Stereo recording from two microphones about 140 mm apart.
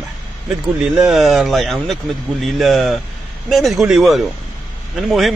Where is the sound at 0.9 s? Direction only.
Centre (ahead or behind).